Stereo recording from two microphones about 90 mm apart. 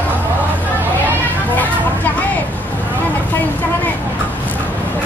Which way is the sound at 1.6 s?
20° left (ahead or behind).